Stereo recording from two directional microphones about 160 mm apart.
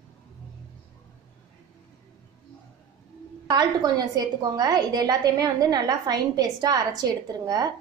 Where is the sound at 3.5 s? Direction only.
25° right (ahead or behind).